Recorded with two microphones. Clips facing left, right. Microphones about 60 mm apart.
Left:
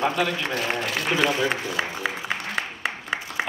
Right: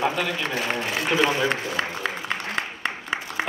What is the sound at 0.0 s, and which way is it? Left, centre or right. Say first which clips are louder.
A man's voice: left 1 dB; centre.